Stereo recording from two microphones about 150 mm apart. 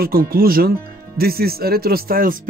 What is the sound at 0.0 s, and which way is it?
Speech, 85° right.